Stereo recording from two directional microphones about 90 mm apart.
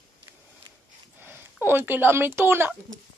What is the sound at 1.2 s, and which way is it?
Speech, 25° right (ahead or behind).